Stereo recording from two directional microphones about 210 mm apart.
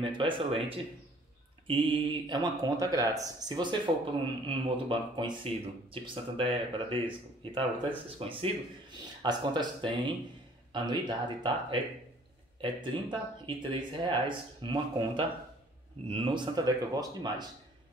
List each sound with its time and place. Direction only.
0.0 s speech: 25° right (ahead or behind)